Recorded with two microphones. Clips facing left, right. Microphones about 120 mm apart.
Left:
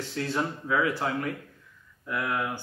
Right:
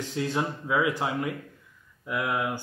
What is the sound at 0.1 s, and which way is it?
Speech, 15° right (ahead or behind).